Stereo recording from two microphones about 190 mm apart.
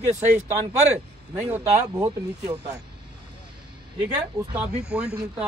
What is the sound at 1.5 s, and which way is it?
Speech, 15° right (ahead or behind).